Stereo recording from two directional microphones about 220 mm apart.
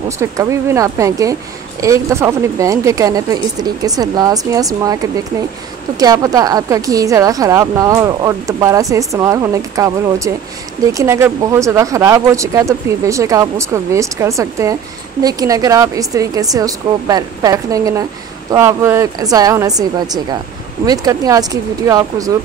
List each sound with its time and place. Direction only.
0.2 s a woman's voice: 15° right (ahead or behind)
5.9 s a woman's voice: 15° right (ahead or behind)